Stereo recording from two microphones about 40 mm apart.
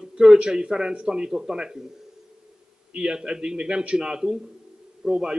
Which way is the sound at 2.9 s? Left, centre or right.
Right.